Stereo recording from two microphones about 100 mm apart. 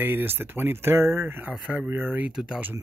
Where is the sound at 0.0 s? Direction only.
20° right (ahead or behind).